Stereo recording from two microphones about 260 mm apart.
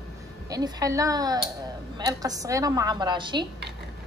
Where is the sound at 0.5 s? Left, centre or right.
Centre.